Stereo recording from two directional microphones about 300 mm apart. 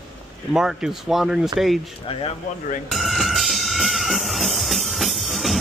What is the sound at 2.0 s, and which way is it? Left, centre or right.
Speech, centre.